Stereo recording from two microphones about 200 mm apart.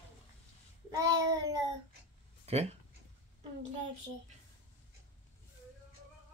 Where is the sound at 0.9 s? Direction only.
15° right (ahead or behind).